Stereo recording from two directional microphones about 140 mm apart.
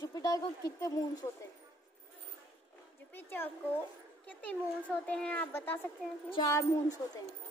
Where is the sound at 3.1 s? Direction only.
15° left (ahead or behind).